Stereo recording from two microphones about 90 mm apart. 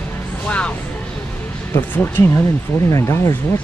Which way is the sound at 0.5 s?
15° left (ahead or behind).